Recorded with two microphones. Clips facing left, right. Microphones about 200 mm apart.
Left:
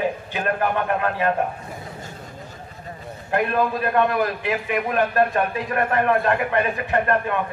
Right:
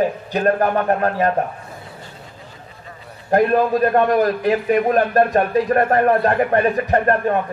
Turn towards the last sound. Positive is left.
turn(degrees=-40)  # may be behind; listen again after turning